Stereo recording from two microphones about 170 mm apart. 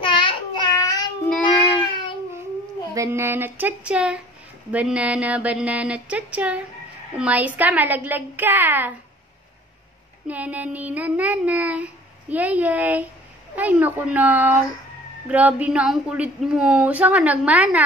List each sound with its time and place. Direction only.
0.0 s child singing: 30° left (ahead or behind)
2.9 s speech: 15° right (ahead or behind)
10.2 s speech: 10° right (ahead or behind)